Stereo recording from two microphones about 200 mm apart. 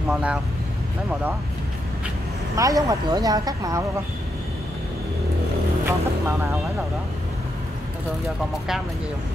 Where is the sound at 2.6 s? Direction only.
15° right (ahead or behind).